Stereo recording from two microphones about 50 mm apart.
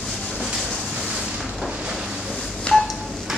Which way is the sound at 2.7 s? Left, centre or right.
Left.